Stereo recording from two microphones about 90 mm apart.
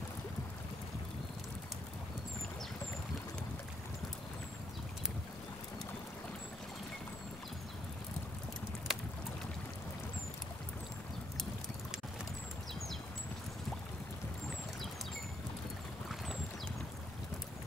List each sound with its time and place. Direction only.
8.9 s boat: 5° right (ahead or behind)